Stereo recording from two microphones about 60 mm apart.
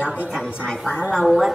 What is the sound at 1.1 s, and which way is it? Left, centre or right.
Speech, centre.